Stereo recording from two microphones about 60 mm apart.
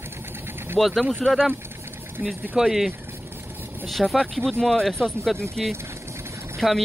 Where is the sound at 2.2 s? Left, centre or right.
Right.